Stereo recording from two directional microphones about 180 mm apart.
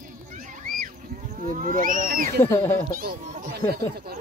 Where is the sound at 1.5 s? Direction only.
50° right (ahead or behind).